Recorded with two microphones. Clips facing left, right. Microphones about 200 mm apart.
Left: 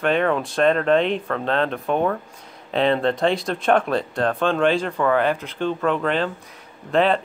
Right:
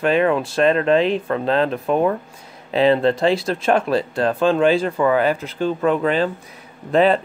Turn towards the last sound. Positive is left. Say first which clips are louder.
# right 3 dB
turn(degrees=-5)  # may be behind; listen again after turning